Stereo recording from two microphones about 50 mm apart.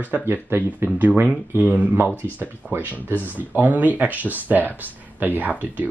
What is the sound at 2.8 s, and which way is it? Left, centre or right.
Speech, left.